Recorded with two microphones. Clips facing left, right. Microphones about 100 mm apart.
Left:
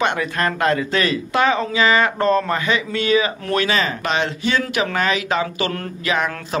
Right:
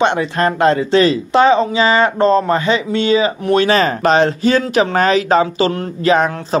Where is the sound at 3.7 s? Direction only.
40° right (ahead or behind).